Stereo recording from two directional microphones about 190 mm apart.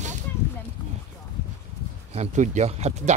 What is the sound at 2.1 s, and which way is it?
Speech, 40° right (ahead or behind).